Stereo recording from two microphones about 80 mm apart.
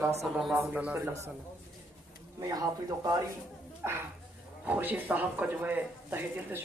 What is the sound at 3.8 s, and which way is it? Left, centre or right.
Speech, right.